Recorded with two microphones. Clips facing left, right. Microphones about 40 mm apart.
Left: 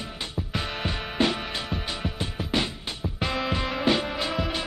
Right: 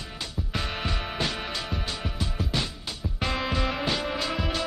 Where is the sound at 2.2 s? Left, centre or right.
Left.